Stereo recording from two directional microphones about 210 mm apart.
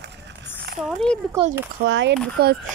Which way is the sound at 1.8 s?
60° right (ahead or behind).